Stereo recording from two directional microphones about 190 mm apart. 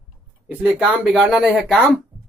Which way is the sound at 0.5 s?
5° right (ahead or behind).